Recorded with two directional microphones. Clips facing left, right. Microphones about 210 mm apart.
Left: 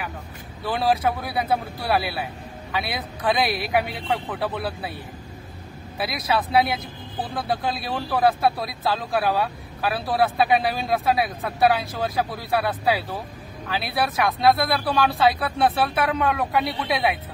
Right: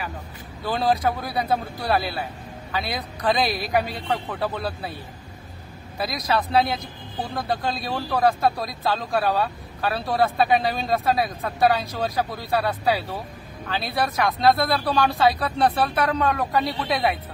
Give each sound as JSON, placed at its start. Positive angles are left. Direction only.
{"t": 0.7, "sound": "speech", "side_deg": 0}
{"t": 5.9, "sound": "speech", "side_deg": 5}